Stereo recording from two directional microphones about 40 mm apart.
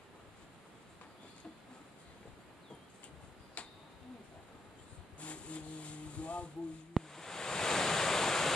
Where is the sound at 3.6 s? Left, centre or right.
Left.